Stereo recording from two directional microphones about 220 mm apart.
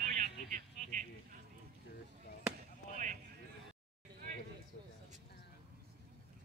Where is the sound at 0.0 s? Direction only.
35° right (ahead or behind).